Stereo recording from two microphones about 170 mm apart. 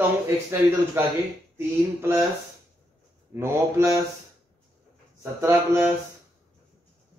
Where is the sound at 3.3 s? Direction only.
15° right (ahead or behind).